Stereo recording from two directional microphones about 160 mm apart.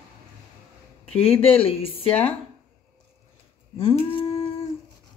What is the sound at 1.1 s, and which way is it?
Speech, 35° left (ahead or behind).